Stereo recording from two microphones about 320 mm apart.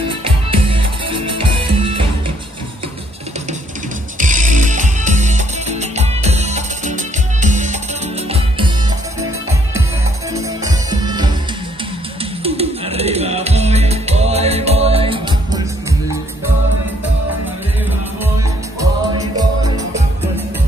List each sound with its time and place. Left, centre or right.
0.2 s music: centre
4.2 s music: right
10.3 s music: centre
12.4 s music: centre
18.8 s music: centre